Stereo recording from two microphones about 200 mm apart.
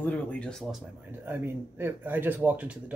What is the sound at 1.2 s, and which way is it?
Speech, 10° right (ahead or behind).